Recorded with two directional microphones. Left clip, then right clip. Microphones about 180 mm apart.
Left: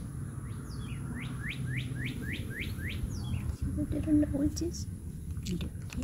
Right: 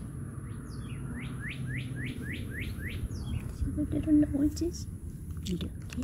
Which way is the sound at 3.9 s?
10° right (ahead or behind).